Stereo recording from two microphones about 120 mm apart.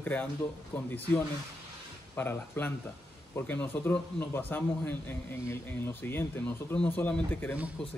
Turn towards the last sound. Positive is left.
turn(degrees=10)  # may be behind; listen again after turning